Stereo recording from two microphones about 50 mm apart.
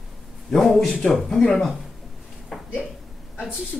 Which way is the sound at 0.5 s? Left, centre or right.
Centre.